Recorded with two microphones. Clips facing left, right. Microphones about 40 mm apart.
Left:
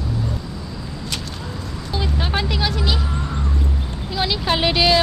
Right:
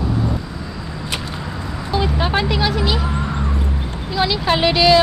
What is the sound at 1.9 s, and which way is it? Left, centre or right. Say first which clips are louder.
Speech: right 5 dB; centre.